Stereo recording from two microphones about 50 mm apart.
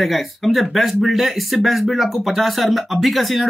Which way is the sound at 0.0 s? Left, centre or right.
Centre.